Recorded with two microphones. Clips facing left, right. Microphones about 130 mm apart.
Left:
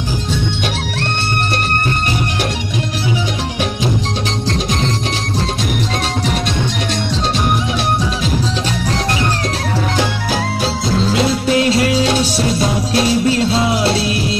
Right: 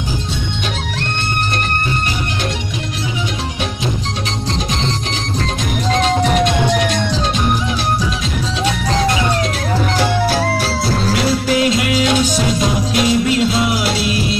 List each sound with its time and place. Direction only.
11.1 s music: 25° left (ahead or behind)